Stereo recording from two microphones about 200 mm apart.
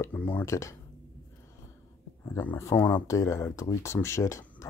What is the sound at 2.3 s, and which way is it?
Speech, 10° left (ahead or behind).